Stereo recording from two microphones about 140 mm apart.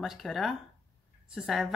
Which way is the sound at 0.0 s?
Centre (ahead or behind).